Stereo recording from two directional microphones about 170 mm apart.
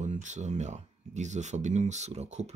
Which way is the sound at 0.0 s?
45° right (ahead or behind).